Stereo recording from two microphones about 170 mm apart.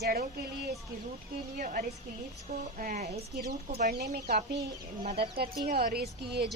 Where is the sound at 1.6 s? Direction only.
55° right (ahead or behind).